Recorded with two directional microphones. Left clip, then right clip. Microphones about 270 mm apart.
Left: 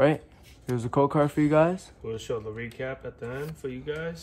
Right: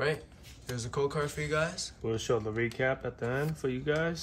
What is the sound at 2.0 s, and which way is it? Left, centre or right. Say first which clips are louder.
Speech: right 3 dB; right.